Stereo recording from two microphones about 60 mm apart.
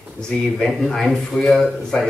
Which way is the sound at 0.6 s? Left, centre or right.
Centre.